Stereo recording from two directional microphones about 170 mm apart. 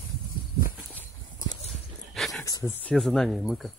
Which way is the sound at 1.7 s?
Centre (ahead or behind).